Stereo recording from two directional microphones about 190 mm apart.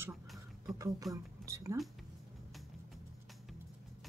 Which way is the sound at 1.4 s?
15° right (ahead or behind).